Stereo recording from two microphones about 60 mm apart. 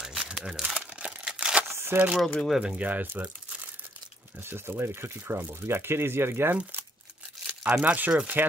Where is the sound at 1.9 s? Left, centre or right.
Right.